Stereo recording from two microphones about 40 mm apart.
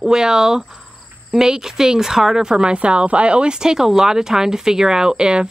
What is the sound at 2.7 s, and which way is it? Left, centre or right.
A woman's voice, right.